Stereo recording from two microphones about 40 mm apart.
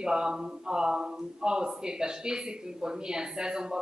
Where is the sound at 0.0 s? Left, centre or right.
Centre.